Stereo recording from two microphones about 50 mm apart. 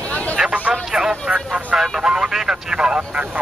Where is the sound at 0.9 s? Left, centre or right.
Centre.